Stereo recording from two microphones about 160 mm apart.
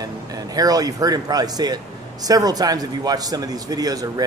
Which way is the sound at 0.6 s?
25° right (ahead or behind).